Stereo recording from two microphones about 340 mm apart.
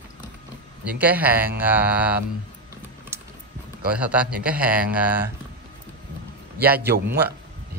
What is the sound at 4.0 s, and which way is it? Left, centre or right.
A man's voice, centre.